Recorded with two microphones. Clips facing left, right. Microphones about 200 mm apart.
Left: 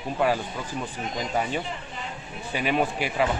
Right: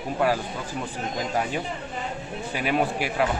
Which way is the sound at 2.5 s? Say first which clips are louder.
Even; 5° right (ahead or behind).